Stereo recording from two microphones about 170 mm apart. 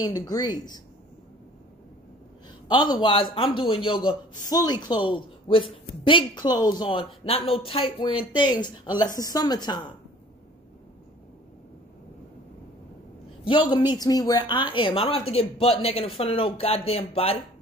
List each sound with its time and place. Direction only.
0.0 s speech: 25° left (ahead or behind)
2.7 s a woman's voice: 30° left (ahead or behind)
13.4 s a woman's voice: 30° left (ahead or behind)